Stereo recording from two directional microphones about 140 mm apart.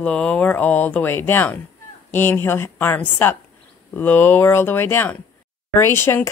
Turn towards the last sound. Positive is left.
turn(degrees=15)  # may be behind; listen again after turning